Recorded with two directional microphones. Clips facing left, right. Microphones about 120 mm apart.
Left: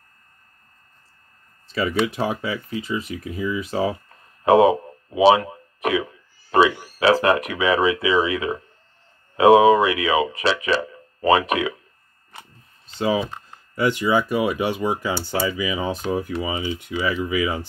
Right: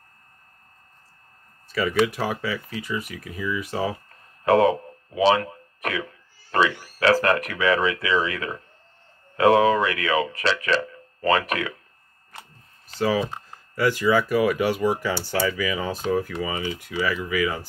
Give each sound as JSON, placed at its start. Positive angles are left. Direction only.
{"t": 1.7, "sound": "speech", "side_deg": 25}
{"t": 4.5, "sound": "speech", "side_deg": 15}
{"t": 12.8, "sound": "speech", "side_deg": 20}